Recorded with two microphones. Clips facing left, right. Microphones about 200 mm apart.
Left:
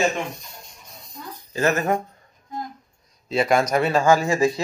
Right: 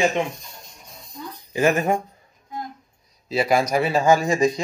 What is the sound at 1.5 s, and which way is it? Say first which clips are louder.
Speech: right 2 dB; 10° right (ahead or behind).